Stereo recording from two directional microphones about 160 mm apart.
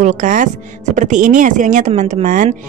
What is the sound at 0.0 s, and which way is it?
Speech, 50° right (ahead or behind).